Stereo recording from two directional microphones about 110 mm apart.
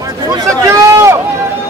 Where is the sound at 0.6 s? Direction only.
30° right (ahead or behind).